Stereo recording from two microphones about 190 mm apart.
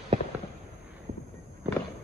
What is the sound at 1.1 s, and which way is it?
Walk, 35° right (ahead or behind).